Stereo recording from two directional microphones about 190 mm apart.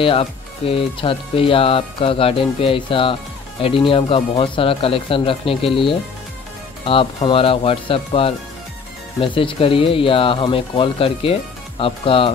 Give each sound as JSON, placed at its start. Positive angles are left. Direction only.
{"t": 0.0, "sound": "speech", "side_deg": 30}